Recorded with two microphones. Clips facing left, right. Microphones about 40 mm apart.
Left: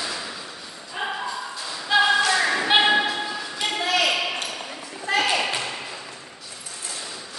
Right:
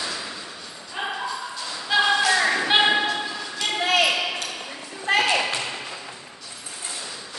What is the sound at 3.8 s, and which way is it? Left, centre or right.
Basketball bounce, right.